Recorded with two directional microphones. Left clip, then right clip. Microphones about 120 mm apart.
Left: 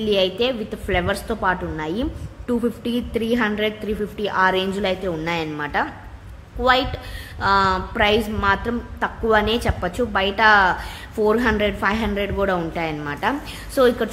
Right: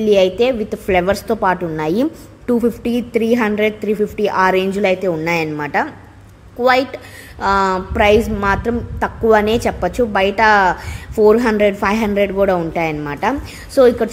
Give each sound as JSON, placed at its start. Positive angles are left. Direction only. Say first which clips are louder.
{"t": 0.0, "sound": "a woman's voice", "louder": "right 7 dB", "side_deg": -35}
{"t": 1.8, "sound": "a woman's voice", "louder": "right 8 dB", "side_deg": -55}
{"t": 2.4, "sound": "a woman's voice", "louder": "right 6 dB", "side_deg": -35}
{"t": 7.3, "sound": "a woman's voice", "louder": "right 3 dB", "side_deg": -35}